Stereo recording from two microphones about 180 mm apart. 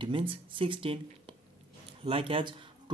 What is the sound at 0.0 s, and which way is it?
Speech, 25° right (ahead or behind).